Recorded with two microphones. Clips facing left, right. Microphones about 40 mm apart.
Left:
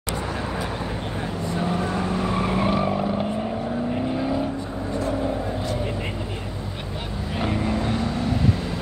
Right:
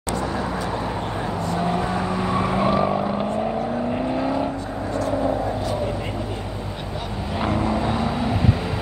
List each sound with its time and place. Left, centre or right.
0.1 s vehicle: centre
1.6 s vehicle: right
2.0 s vehicle: right
2.6 s vehicle: centre
2.9 s vehicle: centre
7.3 s vehicle: centre